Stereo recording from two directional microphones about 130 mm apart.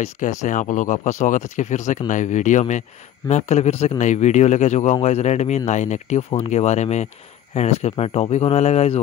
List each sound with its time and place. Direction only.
0.0 s a man's voice: 65° left (ahead or behind)